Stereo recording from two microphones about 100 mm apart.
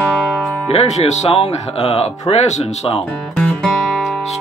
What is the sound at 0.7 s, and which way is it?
Speech, 90° left.